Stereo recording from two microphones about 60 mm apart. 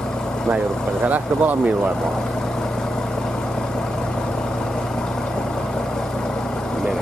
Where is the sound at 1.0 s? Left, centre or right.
Right.